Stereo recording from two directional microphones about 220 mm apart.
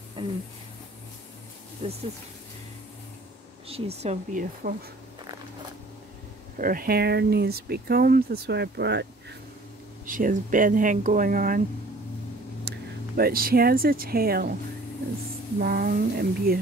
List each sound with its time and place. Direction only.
0.2 s a sound: 20° right (ahead or behind)
1.8 s speech: 25° right (ahead or behind)
3.6 s speech: 25° right (ahead or behind)
6.6 s speech: 40° right (ahead or behind)
10.0 s speech: 35° right (ahead or behind)
12.6 s speech: 45° right (ahead or behind)
15.6 s speech: 45° right (ahead or behind)